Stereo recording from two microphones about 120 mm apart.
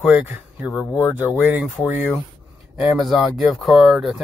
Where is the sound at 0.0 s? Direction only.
10° right (ahead or behind).